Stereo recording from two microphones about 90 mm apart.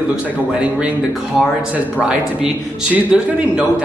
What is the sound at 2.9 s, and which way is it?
Speech, 15° right (ahead or behind).